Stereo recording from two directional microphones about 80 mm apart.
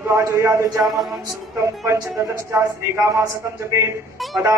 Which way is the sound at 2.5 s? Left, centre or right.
Right.